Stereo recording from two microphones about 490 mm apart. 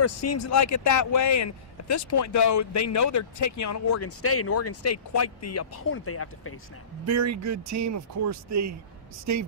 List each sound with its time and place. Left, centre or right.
0.0 s speech: left
7.1 s speech: right